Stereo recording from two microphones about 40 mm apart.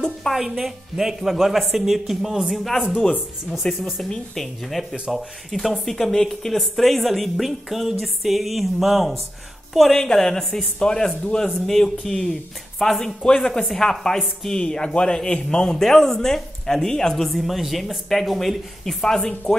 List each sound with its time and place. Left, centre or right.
0.3 s a woman's voice: centre
2.5 s a woman's voice: centre
3.6 s speech: left
4.4 s a woman's voice: centre
9.9 s speech: centre
13.0 s speech: left
17.3 s a woman's voice: centre
19.0 s speech: centre